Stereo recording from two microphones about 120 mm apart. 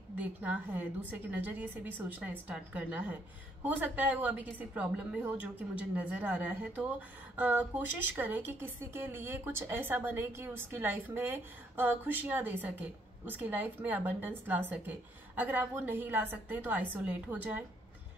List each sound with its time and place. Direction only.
0.2 s a woman's voice: 10° right (ahead or behind)